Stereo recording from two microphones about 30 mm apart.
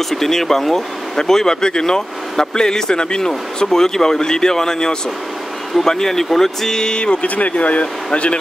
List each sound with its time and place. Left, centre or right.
0.1 s speech: centre; by 7.2 s left
7.2 s speech: left